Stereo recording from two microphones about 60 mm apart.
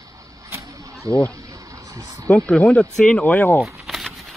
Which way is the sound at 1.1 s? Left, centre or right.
Right.